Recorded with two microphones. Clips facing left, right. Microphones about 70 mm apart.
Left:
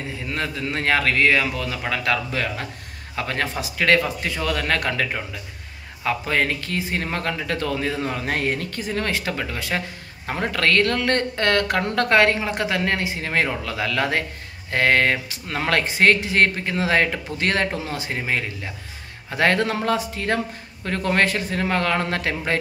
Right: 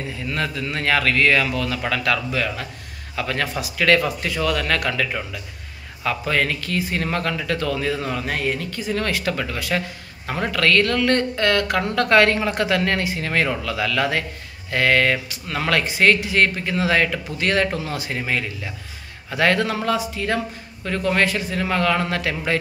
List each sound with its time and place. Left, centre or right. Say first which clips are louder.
0.3 s speech: right 1 dB; left
2.3 s speech: right 1 dB; left
6.0 s speech: even; left
8.4 s speech: even; left
8.9 s speech: right 2 dB; left
12.1 s speech: right 2 dB; left